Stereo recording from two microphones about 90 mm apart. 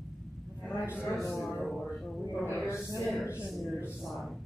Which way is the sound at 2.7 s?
35° left (ahead or behind).